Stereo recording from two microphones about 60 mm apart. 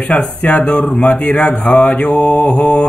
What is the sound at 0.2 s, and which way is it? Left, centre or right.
Speech, centre.